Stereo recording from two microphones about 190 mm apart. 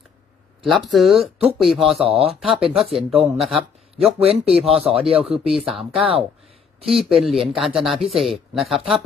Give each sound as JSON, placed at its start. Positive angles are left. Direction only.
{"t": 0.7, "sound": "speech", "side_deg": 0}
{"t": 2.0, "sound": "speech", "side_deg": -30}
{"t": 2.4, "sound": "speech", "side_deg": 0}
{"t": 4.2, "sound": "speech", "side_deg": -30}
{"t": 5.3, "sound": "speech", "side_deg": 0}